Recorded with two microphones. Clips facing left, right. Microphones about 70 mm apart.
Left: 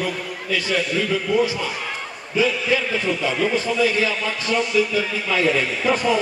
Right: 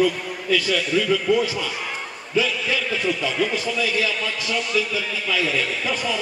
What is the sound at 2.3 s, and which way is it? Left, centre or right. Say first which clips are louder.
A man's voice: left 3 dB; left.